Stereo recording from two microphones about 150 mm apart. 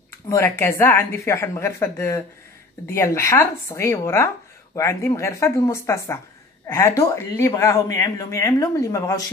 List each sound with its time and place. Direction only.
0.3 s a woman's voice: 15° left (ahead or behind)